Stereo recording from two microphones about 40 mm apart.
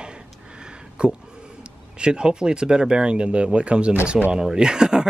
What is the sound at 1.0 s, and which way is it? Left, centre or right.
Speech, right.